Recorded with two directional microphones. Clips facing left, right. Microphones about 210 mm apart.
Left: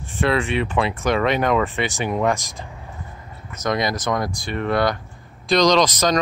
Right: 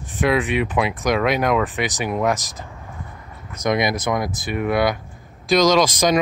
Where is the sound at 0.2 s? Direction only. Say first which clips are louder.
Right 1 dB; 15° right (ahead or behind).